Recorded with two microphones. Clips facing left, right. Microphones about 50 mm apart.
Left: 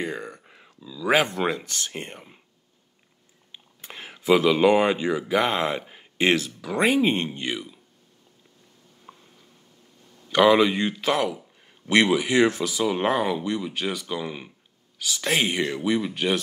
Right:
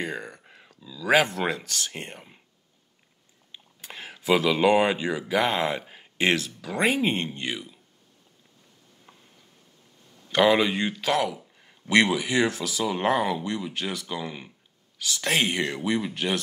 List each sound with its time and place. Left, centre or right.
0.1 s speech: centre
3.8 s speech: centre
9.1 s a sound: centre
10.3 s speech: centre
11.0 s speech: centre
11.2 s a sound: centre
11.9 s speech: centre
12.8 s speech: centre
15.3 s speech: centre
15.6 s speech: centre